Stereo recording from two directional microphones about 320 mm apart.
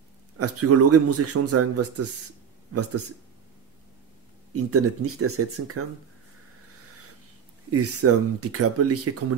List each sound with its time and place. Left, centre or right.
0.4 s speech: right
4.6 s speech: right
7.7 s speech: right